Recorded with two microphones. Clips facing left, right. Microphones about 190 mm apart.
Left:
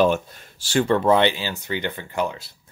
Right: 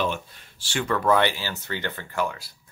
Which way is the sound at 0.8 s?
25° left (ahead or behind).